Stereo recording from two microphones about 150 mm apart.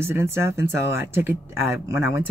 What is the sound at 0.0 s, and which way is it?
Speech, 15° right (ahead or behind).